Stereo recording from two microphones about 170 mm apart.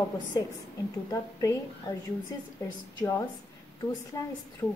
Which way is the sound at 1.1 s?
20° left (ahead or behind).